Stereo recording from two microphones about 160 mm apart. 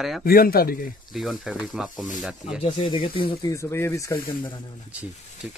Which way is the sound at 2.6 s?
30° left (ahead or behind).